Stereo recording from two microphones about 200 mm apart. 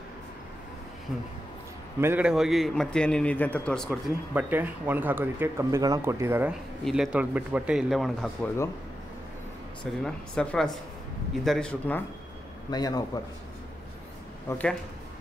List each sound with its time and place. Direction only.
2.0 s a man's voice: 10° right (ahead or behind)
4.3 s a man's voice: 10° right (ahead or behind)
10.0 s a man's voice: 5° left (ahead or behind)
12.7 s a man's voice: 20° left (ahead or behind)
14.5 s speech: 15° left (ahead or behind)